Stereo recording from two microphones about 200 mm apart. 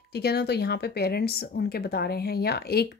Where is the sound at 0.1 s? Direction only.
55° left (ahead or behind).